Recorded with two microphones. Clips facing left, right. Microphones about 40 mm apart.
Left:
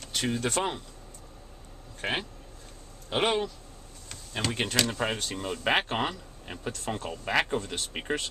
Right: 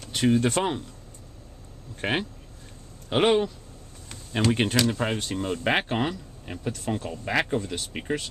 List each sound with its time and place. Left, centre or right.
0.1 s speech: centre
2.0 s speech: centre
4.7 s speech: centre